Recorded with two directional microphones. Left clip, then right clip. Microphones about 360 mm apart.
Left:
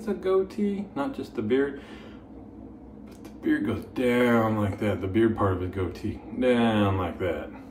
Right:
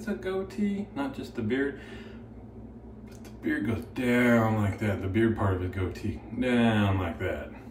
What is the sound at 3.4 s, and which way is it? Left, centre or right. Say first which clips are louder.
Speech: left 4 dB; centre.